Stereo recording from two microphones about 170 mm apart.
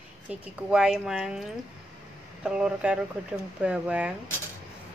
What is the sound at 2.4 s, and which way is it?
Speech, 5° right (ahead or behind).